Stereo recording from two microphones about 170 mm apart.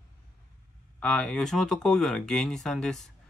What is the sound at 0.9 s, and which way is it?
Speech, 5° left (ahead or behind).